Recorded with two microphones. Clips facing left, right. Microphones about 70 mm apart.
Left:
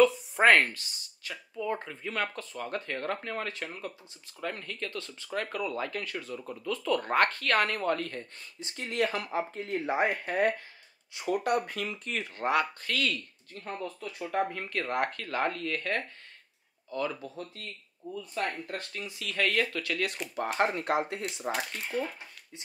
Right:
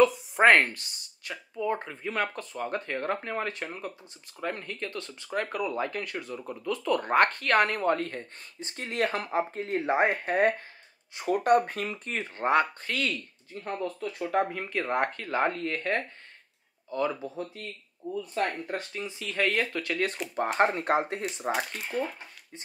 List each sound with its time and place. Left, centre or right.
0.4 s speech: centre
1.9 s speech: centre
8.1 s speech: right; by 13.7 s centre
13.7 s speech: centre
17.4 s speech: centre
18.4 s speech: centre
18.7 s speech: centre
19.0 s speech: right
21.3 s speech: centre